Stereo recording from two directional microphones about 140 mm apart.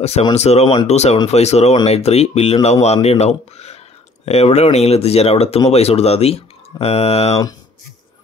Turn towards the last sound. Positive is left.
turn(degrees=45)  # may be behind; listen again after turning